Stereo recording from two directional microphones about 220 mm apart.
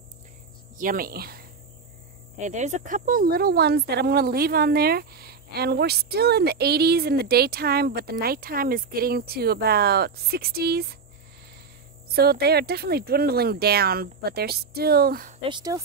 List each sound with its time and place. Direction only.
0.7 s speech: 40° right (ahead or behind)
2.3 s speech: 35° right (ahead or behind)
12.1 s speech: 45° right (ahead or behind)
15.4 s speech: 20° right (ahead or behind)